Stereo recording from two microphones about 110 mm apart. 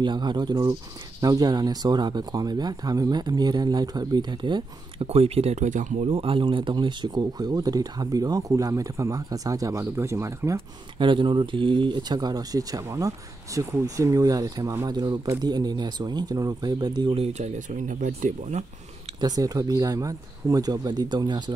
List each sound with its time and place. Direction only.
0.0 s speech: 45° right (ahead or behind)
5.0 s speech: 65° right (ahead or behind); by 10.6 s 30° right (ahead or behind)
11.0 s speech: 50° right (ahead or behind)
17.1 s speech: 75° right (ahead or behind)
19.1 s speech: 35° right (ahead or behind)